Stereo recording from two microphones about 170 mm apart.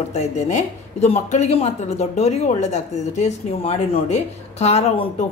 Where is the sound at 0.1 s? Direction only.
40° left (ahead or behind).